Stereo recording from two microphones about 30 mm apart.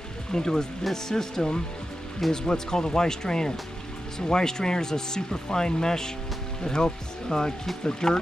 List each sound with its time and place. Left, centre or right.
0.3 s speech: left